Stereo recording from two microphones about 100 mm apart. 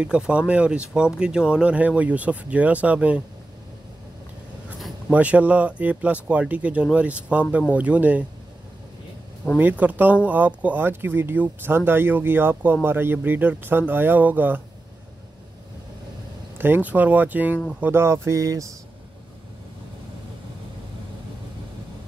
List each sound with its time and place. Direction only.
0.0 s speech: 10° right (ahead or behind)
5.1 s speech: 15° right (ahead or behind)
9.6 s speech: 15° right (ahead or behind)
16.5 s speech: 20° right (ahead or behind)